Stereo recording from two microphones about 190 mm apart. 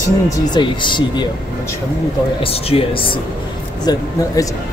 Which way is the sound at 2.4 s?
30° left (ahead or behind).